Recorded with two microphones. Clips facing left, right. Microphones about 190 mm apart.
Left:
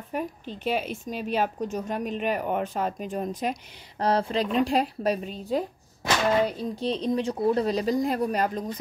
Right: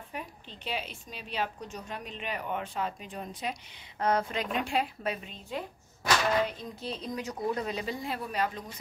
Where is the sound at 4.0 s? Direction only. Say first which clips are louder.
Left 5 dB; 30° left (ahead or behind).